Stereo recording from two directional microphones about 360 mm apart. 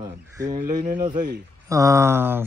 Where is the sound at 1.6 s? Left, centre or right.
Centre.